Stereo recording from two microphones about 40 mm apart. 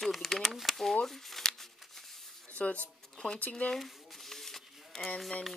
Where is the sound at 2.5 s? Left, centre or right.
Left.